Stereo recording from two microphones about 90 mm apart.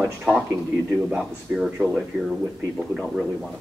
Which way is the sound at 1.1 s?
5° right (ahead or behind).